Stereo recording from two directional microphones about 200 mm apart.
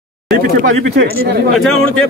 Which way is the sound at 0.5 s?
50° right (ahead or behind).